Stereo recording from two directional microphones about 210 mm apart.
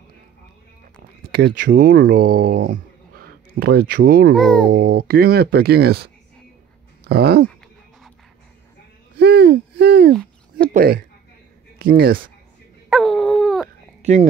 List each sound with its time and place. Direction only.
1.3 s speech: 50° right (ahead or behind)
4.4 s speech: 5° left (ahead or behind)
4.6 s speech: 45° right (ahead or behind)
9.2 s hoot: 50° right (ahead or behind)
10.7 s speech: 45° right (ahead or behind)
12.9 s dog: centre (ahead or behind)